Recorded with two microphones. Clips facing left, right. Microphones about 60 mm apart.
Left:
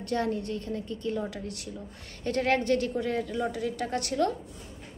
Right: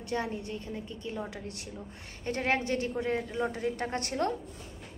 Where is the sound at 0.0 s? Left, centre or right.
Centre.